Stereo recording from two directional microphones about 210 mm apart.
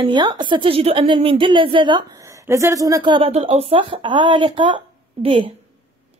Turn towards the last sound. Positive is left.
turn(degrees=-25)  # may be behind; listen again after turning